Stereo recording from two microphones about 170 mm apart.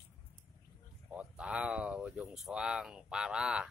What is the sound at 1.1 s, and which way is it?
Speech, 5° right (ahead or behind).